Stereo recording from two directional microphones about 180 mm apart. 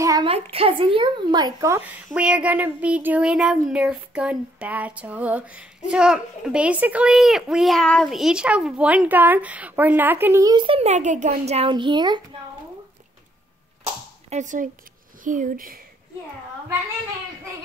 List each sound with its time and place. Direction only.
0.0 s a sound: 20° right (ahead or behind)
0.3 s speech: 30° right (ahead or behind); by 1.9 s 15° right (ahead or behind)
2.0 s speech: 5° right (ahead or behind); by 12.2 s 25° right (ahead or behind)
14.3 s speech: 45° right (ahead or behind)